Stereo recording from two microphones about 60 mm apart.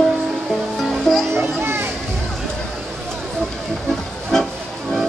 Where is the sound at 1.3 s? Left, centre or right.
Right.